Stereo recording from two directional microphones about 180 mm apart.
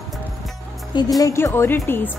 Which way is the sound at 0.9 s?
20° left (ahead or behind).